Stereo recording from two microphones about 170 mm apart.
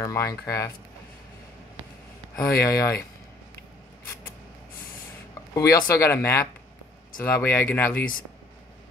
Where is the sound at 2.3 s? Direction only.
15° left (ahead or behind).